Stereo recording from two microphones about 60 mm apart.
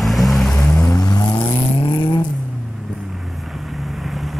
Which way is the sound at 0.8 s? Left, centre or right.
Left.